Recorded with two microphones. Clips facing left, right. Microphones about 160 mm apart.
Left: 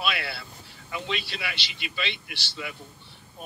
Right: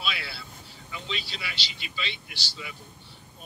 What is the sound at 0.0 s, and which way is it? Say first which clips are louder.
A man's voice: left 5 dB; 60° left (ahead or behind).